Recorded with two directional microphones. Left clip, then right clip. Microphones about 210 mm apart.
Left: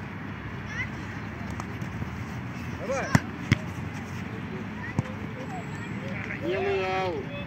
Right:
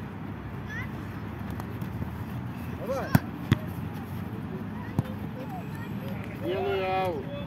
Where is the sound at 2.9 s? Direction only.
20° right (ahead or behind).